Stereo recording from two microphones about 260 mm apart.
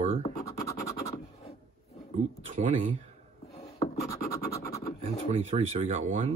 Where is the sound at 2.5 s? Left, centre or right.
Right.